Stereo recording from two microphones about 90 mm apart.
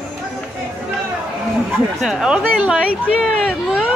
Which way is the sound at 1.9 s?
5° right (ahead or behind).